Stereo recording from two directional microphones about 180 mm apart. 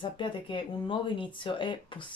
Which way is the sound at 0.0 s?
30° left (ahead or behind).